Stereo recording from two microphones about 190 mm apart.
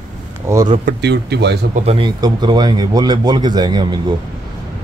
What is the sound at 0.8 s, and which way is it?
Speech, 60° right (ahead or behind).